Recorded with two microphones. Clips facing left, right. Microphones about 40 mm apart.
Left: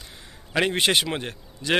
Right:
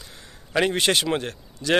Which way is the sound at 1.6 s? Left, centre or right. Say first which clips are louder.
Right 2 dB; centre.